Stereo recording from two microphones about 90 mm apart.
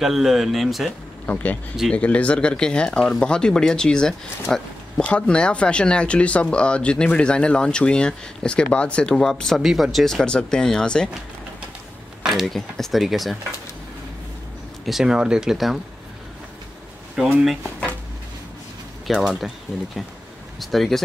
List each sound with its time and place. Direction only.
0.0 s speech: 5° right (ahead or behind)
1.2 s speech: 20° left (ahead or behind)
12.2 s speech: 5° right (ahead or behind)
14.9 s speech: 5° right (ahead or behind)
17.6 s a sound: 15° left (ahead or behind)
19.0 s speech: 5° right (ahead or behind)
20.5 s speech: centre (ahead or behind)